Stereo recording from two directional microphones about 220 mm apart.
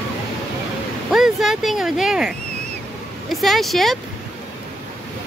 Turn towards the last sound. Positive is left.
turn(degrees=0)  # may be behind; listen again after turning